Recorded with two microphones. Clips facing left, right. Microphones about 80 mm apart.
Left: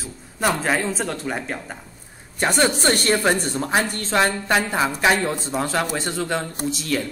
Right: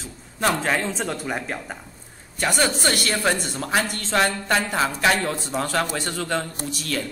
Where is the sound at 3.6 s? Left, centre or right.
Left.